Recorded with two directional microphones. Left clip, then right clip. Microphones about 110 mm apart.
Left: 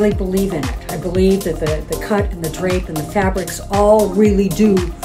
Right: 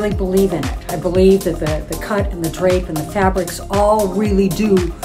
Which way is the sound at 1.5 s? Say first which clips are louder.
Right 1 dB; 40° right (ahead or behind).